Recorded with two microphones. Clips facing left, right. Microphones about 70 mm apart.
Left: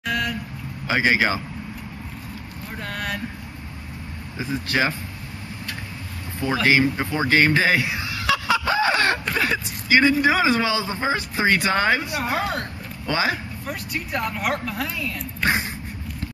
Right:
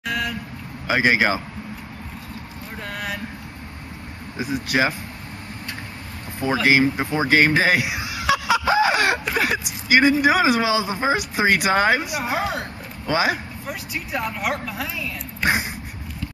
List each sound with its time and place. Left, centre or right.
0.0 s vehicle: centre
0.8 s speech: right
2.9 s a sound: centre
4.4 s speech: centre
6.7 s speech: centre
12.3 s speech: centre
13.1 s speech: centre
13.7 s speech: centre
15.4 s speech: centre